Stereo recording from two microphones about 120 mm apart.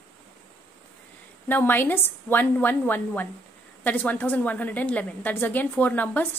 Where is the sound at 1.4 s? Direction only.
15° left (ahead or behind).